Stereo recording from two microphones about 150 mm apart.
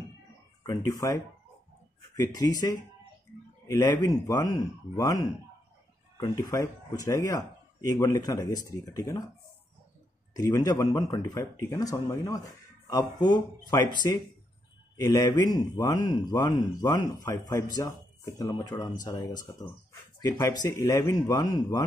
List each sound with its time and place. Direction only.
0.7 s speech: 20° left (ahead or behind)
10.3 s speech: 25° left (ahead or behind)
15.0 s speech: 20° left (ahead or behind)